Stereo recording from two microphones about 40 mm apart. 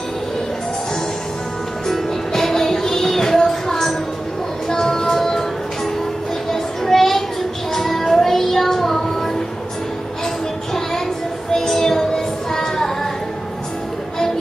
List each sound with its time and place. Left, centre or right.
1.9 s music: centre
6.5 s child singing: centre
11.5 s child singing: centre